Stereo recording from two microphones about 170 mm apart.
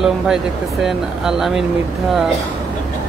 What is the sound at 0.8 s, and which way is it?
Speech, centre (ahead or behind).